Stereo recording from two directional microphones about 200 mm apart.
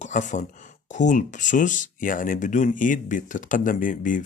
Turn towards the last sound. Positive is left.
turn(degrees=40)  # may be behind; listen again after turning